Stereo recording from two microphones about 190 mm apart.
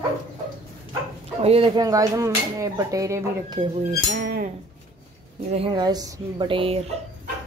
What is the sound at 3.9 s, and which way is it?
Music, 50° right (ahead or behind).